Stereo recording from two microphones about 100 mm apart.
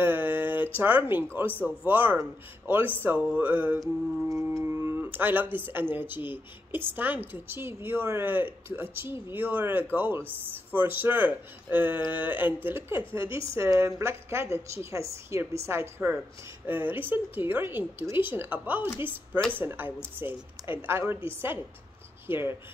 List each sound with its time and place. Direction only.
0.0 s a sound: 20° right (ahead or behind)
1.6 s speech: 20° right (ahead or behind)
3.8 s speech: 30° right (ahead or behind)